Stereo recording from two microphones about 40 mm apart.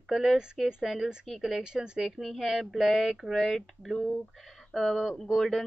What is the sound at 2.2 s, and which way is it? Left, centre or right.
Speech, centre.